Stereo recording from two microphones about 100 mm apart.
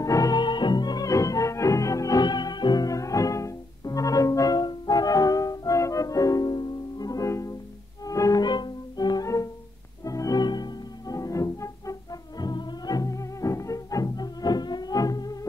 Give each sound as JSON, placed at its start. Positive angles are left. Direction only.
{"t": 0.0, "sound": "music", "side_deg": 35}